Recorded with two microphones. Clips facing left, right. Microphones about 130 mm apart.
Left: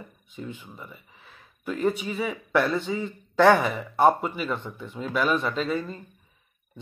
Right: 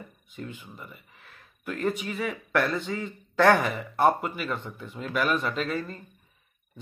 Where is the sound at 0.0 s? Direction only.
Centre (ahead or behind).